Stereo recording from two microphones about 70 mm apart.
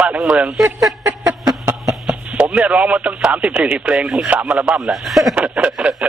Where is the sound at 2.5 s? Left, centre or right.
Centre.